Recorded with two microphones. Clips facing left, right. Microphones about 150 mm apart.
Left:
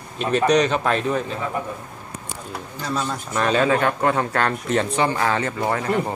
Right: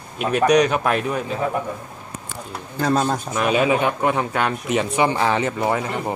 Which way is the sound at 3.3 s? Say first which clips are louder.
Left 2 dB; 10° right (ahead or behind).